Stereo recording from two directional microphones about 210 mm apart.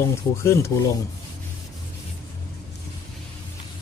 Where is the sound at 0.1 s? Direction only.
15° left (ahead or behind).